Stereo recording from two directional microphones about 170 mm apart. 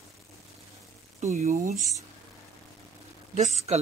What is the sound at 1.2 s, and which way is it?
Speech, 40° right (ahead or behind).